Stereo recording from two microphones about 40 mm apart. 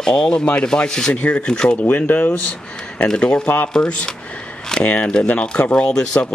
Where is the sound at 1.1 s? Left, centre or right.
Left.